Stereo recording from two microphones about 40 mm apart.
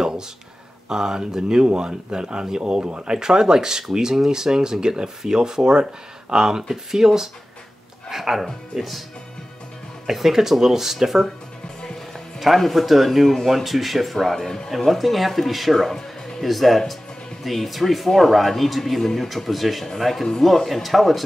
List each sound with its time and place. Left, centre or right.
0.8 s speech: centre
10.0 s speech: centre
12.4 s speech: centre
14.3 s speech: centre
14.7 s speech: centre